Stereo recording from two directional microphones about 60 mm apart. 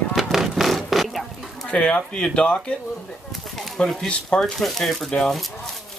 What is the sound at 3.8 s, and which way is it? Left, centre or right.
Speech, centre.